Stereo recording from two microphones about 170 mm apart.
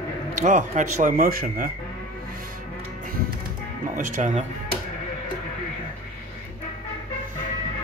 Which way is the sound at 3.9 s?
50° right (ahead or behind).